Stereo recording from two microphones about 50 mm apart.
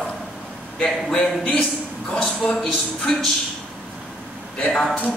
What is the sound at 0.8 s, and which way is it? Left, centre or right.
Speech, centre.